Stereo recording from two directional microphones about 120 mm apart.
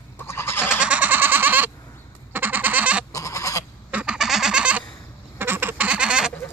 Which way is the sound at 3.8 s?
10° right (ahead or behind).